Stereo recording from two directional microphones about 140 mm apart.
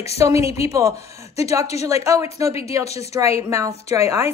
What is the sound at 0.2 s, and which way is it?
A woman's voice, 20° right (ahead or behind).